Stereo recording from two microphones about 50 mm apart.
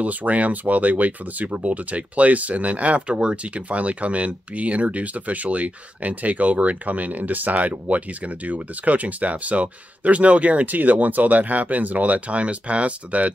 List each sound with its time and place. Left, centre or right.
0.0 s speech: right